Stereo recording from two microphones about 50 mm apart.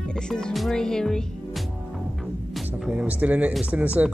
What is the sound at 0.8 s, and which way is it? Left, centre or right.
Speech, centre.